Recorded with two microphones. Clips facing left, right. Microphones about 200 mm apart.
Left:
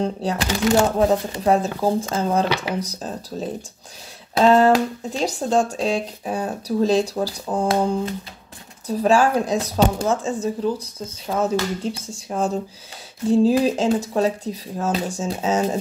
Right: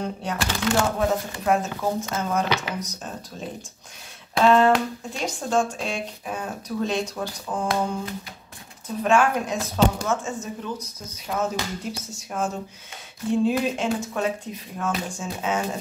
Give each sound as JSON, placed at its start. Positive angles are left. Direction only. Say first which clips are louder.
{"t": 0.0, "sound": "speech", "louder": "left 5 dB", "side_deg": 35}
{"t": 11.8, "sound": "speech", "louder": "left 5 dB", "side_deg": 30}